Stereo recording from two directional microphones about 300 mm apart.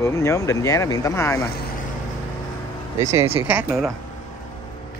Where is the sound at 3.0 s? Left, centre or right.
Centre.